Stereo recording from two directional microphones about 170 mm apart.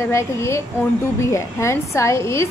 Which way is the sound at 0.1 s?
15° left (ahead or behind).